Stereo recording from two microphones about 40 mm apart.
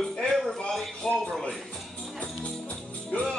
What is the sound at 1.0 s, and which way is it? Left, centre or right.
Music, centre.